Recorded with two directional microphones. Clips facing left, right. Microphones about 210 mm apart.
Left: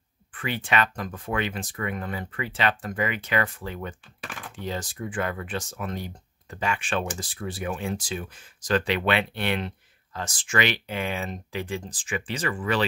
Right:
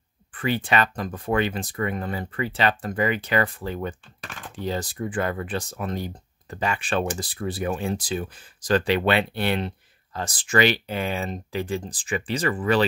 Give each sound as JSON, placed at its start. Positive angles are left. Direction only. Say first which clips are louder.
{"t": 0.3, "sound": "speech", "louder": "right 4 dB", "side_deg": -35}